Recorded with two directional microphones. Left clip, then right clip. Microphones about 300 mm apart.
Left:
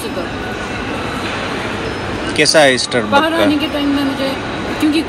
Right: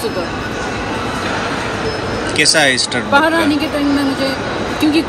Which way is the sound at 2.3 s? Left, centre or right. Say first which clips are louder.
Left 2 dB; centre.